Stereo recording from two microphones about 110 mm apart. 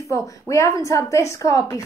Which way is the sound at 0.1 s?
30° left (ahead or behind).